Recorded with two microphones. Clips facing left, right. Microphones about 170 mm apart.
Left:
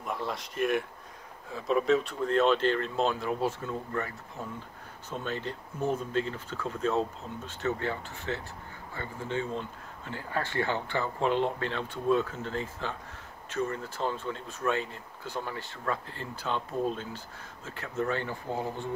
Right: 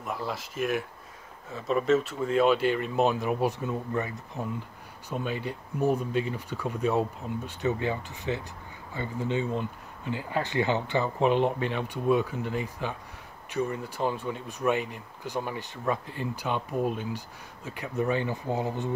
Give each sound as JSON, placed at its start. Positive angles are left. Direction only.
{"t": 0.0, "sound": "speech", "side_deg": 0}